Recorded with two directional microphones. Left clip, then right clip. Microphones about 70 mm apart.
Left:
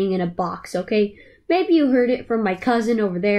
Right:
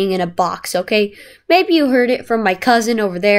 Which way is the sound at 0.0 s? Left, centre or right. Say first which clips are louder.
Right 6 dB; right.